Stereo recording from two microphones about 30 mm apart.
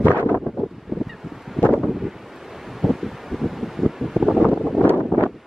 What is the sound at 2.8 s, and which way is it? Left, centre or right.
Wind, centre.